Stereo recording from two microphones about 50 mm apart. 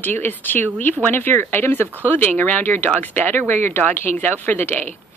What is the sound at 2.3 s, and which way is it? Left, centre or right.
Speech, left.